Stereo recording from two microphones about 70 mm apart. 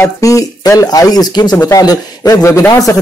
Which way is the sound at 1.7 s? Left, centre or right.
Left.